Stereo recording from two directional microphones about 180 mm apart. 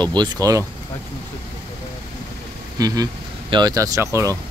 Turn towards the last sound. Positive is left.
turn(degrees=-15)  # may be behind; listen again after turning